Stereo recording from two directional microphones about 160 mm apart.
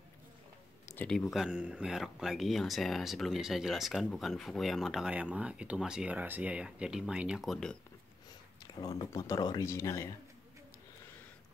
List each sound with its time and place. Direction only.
1.0 s speech: centre (ahead or behind)
8.7 s a sound: 25° left (ahead or behind)
9.1 s speech: 20° left (ahead or behind)